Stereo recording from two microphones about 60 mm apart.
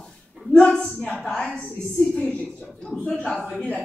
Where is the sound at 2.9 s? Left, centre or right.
Centre.